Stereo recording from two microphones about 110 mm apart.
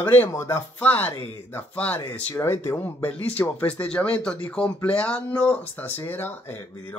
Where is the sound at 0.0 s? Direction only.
15° left (ahead or behind).